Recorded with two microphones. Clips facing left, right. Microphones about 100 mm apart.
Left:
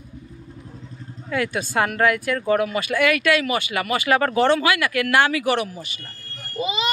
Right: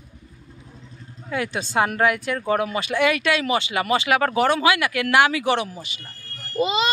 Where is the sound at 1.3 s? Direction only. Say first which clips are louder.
Left 1 dB; 20° right (ahead or behind).